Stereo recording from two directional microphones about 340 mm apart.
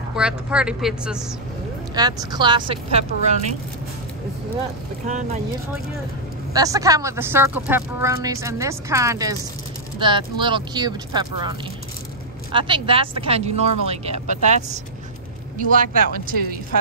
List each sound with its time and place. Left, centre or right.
0.1 s a woman's voice: centre
5.0 s speech: right
6.5 s speech: centre
12.5 s speech: centre
15.7 s speech: right